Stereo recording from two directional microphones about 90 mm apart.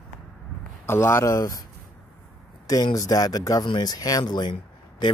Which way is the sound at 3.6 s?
55° left (ahead or behind).